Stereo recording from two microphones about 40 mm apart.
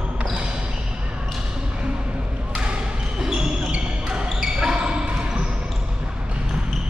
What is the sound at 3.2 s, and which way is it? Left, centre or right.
Basketball bounce, centre.